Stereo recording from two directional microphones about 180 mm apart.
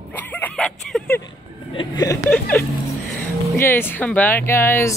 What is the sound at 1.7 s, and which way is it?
Speech, 20° left (ahead or behind).